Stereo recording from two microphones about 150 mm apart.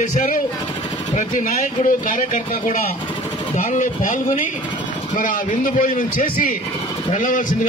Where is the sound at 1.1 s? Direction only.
50° left (ahead or behind).